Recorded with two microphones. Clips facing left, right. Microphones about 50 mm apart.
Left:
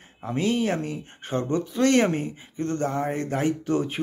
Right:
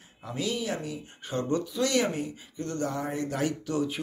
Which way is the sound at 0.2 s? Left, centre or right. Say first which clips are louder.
Left 7 dB; left.